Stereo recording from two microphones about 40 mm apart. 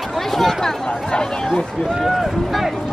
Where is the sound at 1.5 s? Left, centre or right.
Centre.